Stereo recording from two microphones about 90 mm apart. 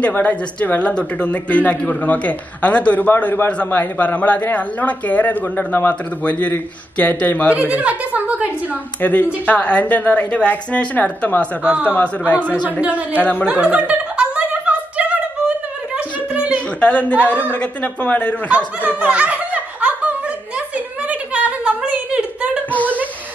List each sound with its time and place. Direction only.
0.0 s speech: 15° left (ahead or behind)
7.5 s a woman's voice: 15° right (ahead or behind)
9.0 s speech: 15° left (ahead or behind)
12.8 s a woman's voice: 20° right (ahead or behind)
13.2 s speech: 15° left (ahead or behind)
13.5 s speech: 10° right (ahead or behind)
15.0 s a sound: 10° right (ahead or behind)
16.8 s speech: 15° left (ahead or behind)
18.9 s chuckle: 15° right (ahead or behind)
22.7 s a sound: 15° left (ahead or behind)